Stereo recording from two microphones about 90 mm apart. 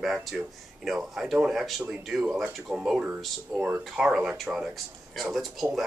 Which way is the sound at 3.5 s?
35° right (ahead or behind).